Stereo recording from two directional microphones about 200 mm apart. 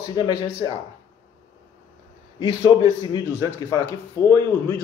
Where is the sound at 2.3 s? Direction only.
20° left (ahead or behind).